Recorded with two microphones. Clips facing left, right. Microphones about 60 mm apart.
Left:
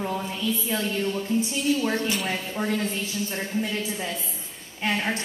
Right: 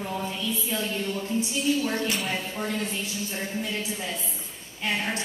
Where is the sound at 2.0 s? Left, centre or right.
Centre.